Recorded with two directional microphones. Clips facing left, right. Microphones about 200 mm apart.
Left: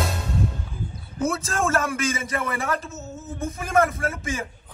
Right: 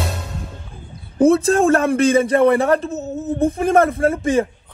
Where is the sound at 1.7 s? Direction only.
35° right (ahead or behind).